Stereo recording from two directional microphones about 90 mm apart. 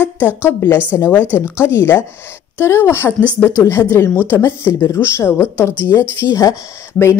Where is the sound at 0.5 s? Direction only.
25° left (ahead or behind).